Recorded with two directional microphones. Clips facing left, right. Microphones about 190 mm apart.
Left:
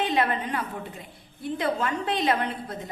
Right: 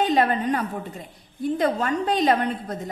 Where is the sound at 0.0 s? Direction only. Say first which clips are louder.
Right 5 dB; 40° right (ahead or behind).